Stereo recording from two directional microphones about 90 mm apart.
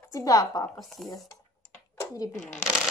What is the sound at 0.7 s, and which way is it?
Speech, centre (ahead or behind).